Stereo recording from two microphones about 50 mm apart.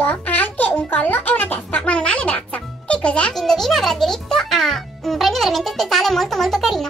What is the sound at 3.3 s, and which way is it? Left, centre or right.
Music, centre.